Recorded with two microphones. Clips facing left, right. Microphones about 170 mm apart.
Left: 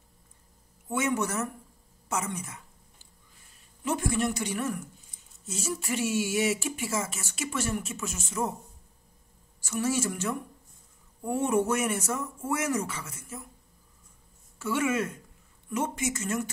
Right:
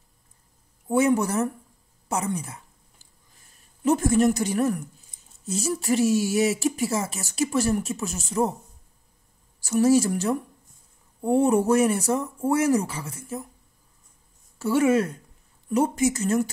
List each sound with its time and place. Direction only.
0.8 s a man's voice: 35° right (ahead or behind)
9.6 s speech: 35° right (ahead or behind)
14.6 s speech: 35° right (ahead or behind)